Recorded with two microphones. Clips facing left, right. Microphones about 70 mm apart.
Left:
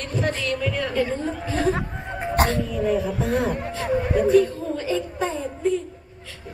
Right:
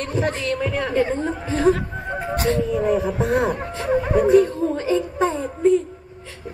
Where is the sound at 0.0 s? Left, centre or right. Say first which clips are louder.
Right 2 dB; right.